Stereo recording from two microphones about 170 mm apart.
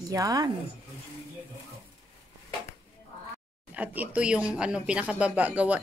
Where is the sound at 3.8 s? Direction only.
10° right (ahead or behind).